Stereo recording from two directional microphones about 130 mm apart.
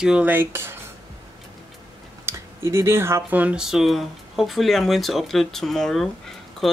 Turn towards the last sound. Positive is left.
turn(degrees=0)  # may be behind; listen again after turning